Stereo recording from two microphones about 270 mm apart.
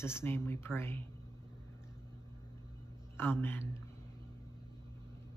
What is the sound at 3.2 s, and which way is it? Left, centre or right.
Speech, centre.